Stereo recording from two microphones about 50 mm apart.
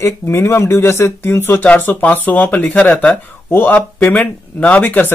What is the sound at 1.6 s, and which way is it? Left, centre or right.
Speech, left.